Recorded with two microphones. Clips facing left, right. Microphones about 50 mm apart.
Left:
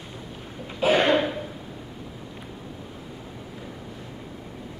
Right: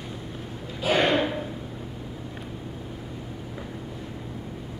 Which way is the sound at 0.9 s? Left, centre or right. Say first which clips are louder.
Even; centre.